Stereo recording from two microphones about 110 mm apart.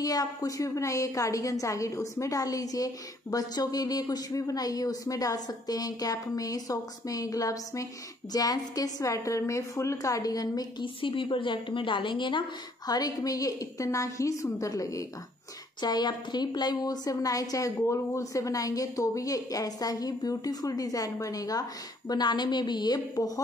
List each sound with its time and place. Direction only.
0.0 s a woman's voice: 35° left (ahead or behind)
11.0 s a woman's voice: 50° left (ahead or behind)
12.8 s a woman's voice: 35° left (ahead or behind)